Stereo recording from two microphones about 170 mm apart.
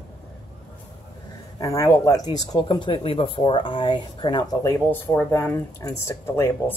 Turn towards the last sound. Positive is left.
turn(degrees=15)  # may be behind; listen again after turning